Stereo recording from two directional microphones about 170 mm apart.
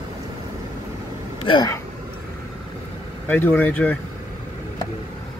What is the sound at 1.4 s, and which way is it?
Speech, 30° left (ahead or behind).